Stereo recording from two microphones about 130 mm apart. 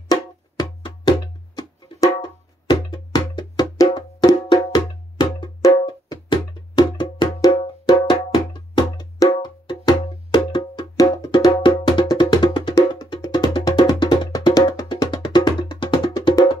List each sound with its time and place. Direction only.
0.1 s music: 30° left (ahead or behind)
7.8 s wood block: 30° left (ahead or behind)